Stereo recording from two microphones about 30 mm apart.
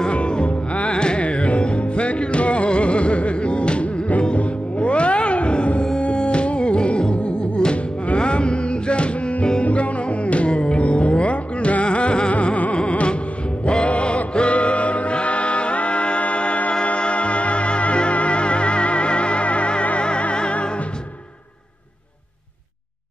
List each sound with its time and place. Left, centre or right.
0.1 s music: left
0.8 s carnatic music: left
1.2 s music: left
10.8 s music: left
12.7 s music: left